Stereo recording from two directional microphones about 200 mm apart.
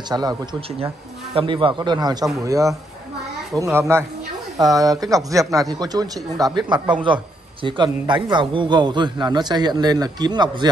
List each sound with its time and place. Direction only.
0.1 s a man's voice: 20° right (ahead or behind)
3.7 s a man's voice: 15° right (ahead or behind)